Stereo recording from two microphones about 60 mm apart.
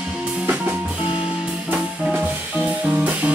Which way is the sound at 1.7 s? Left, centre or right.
Centre.